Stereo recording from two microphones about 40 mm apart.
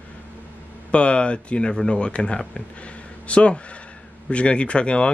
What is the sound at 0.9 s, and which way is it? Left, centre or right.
Speech, left.